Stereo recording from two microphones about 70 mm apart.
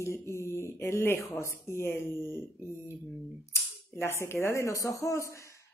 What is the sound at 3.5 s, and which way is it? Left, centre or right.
Cap gun, left.